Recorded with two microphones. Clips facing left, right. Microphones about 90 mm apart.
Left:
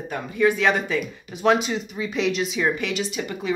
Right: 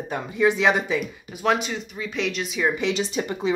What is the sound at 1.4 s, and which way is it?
Speech, centre (ahead or behind).